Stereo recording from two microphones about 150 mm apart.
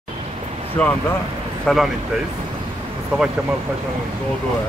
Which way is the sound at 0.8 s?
5° left (ahead or behind).